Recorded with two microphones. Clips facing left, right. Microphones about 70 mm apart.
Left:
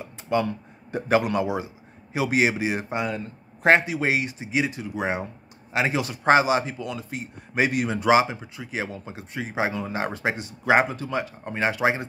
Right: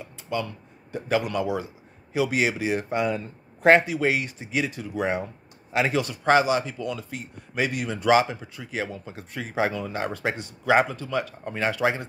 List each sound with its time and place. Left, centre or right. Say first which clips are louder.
0.0 s a sound: left 5 dB; left
0.9 s speech: left 3 dB; left
9.8 s speech: left 1 dB; left